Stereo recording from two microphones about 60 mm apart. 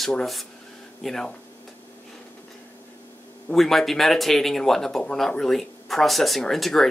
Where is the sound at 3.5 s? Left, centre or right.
Centre.